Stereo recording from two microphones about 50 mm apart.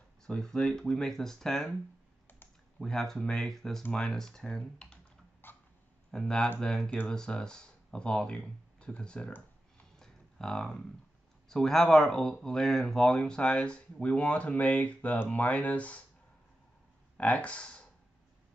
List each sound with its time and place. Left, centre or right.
0.2 s speech: centre
2.2 s typing: left
2.8 s speech: centre
5.4 s a sound: left
6.1 s speech: centre
9.9 s a sound: centre
11.4 s speech: centre; by 16.0 s left
17.2 s speech: left